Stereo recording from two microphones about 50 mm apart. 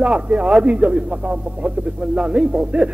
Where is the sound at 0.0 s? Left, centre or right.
Right.